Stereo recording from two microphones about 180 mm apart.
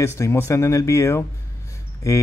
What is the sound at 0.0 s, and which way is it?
Speech, 15° left (ahead or behind).